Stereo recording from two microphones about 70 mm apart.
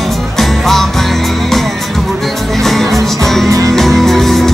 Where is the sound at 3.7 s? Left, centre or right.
Centre.